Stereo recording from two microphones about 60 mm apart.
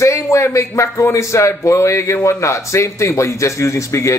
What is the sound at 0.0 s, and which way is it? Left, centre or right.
A man's voice, left.